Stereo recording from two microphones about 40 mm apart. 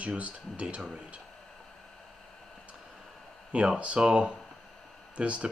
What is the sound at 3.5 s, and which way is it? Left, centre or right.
Speech, right.